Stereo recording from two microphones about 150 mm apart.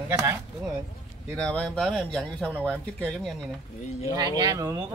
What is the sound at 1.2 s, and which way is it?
Speech, 5° left (ahead or behind).